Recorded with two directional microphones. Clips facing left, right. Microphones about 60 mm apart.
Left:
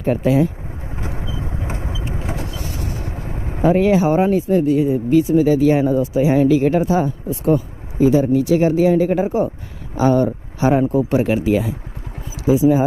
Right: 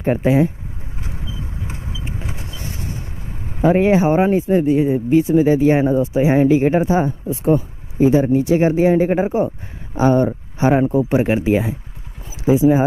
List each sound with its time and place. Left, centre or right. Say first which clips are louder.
0.0 s speech: right 1 dB; right
1.0 s vehicle: left 3 dB; left
3.6 s speech: right 1 dB; right